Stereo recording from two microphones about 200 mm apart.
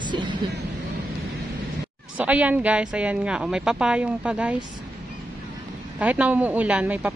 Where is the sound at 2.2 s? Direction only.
5° right (ahead or behind).